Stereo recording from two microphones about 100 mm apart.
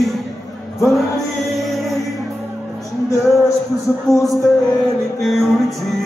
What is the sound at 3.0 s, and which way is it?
Music, 30° left (ahead or behind).